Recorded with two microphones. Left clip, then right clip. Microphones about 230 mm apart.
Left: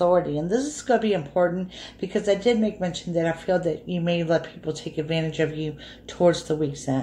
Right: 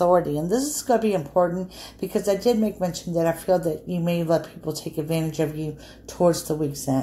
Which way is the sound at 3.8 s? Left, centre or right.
Right.